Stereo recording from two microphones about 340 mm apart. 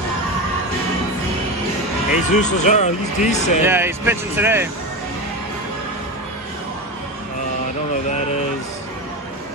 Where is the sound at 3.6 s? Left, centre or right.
Centre.